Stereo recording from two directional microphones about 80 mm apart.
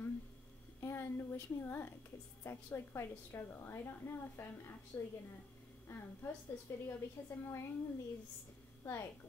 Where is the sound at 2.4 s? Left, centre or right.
Left.